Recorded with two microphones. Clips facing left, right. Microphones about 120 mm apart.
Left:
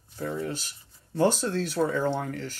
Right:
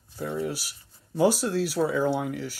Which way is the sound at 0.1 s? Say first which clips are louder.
Right 1 dB; 5° right (ahead or behind).